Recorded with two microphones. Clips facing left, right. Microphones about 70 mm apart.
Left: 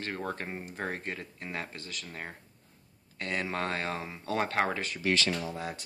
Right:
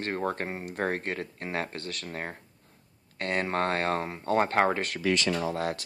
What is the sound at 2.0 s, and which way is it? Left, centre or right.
Speech, right.